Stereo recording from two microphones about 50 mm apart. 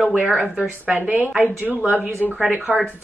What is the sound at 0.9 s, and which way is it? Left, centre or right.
Speech, right.